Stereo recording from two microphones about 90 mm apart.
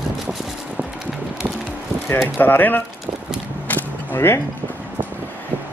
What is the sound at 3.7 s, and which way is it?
Music, 25° left (ahead or behind).